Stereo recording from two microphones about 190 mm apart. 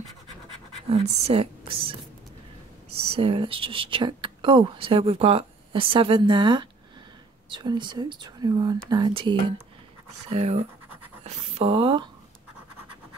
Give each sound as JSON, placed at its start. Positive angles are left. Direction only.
{"t": 0.8, "sound": "speech", "side_deg": -35}